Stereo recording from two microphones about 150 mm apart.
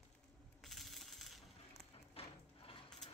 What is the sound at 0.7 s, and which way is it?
Coin, centre (ahead or behind).